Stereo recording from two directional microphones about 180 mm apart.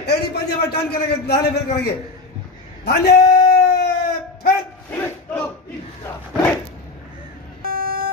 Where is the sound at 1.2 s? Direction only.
65° left (ahead or behind).